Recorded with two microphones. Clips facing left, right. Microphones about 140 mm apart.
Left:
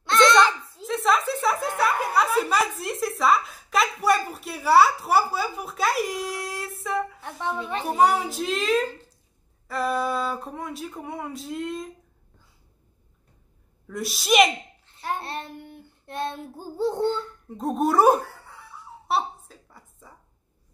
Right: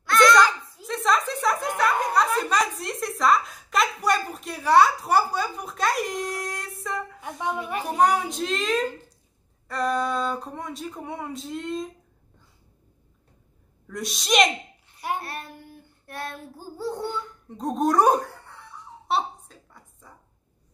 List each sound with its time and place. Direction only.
0.0 s children playing: 25° left (ahead or behind)
0.8 s a sound: centre (ahead or behind)
7.8 s a child's voice: 5° left (ahead or behind)
13.8 s a child's voice: 5° left (ahead or behind)
15.1 s child singing: 25° left (ahead or behind)
17.5 s laughter: 5° left (ahead or behind)